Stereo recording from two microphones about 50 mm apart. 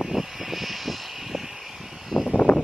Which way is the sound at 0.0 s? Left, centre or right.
Centre.